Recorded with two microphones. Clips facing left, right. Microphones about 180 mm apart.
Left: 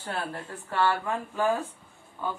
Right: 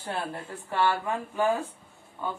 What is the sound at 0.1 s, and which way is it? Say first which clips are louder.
Speech: right 1 dB; 15° right (ahead or behind).